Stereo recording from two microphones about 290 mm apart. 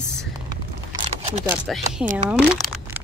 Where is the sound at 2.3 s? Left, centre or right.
Centre.